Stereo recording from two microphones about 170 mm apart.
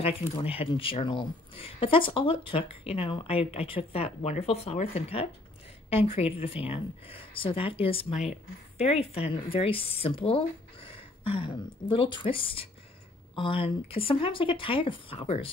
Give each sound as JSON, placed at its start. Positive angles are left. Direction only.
{"t": 0.0, "sound": "speech", "side_deg": 35}